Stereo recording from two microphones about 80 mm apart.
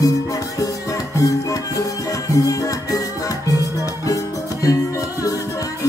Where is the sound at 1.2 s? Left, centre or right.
Left.